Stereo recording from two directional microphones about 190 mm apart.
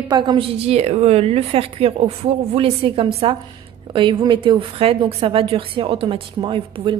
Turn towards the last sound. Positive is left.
turn(degrees=-25)  # may be behind; listen again after turning